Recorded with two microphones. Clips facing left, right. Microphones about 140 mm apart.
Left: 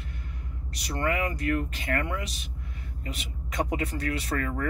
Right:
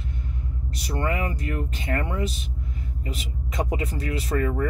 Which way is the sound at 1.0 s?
30° right (ahead or behind).